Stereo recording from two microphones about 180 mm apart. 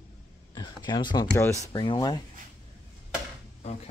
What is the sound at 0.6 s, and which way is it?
Speech, 25° left (ahead or behind).